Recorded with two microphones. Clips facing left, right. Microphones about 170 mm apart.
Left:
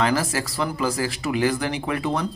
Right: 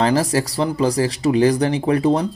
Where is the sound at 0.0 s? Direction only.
35° right (ahead or behind).